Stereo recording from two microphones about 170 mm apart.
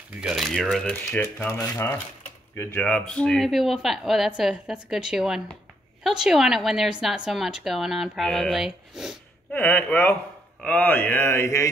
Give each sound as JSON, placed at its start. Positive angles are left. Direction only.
{"t": 0.2, "sound": "speech", "side_deg": 0}
{"t": 1.5, "sound": "speech", "side_deg": 20}
{"t": 9.5, "sound": "mantra", "side_deg": 10}